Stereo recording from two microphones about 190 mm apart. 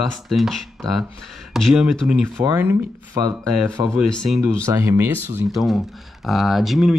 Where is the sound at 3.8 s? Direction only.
20° right (ahead or behind).